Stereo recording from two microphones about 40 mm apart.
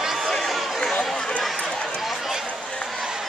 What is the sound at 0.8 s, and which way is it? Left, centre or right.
Chatter, centre.